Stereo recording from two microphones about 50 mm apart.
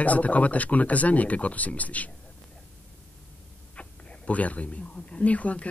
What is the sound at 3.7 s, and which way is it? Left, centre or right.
Speech, left.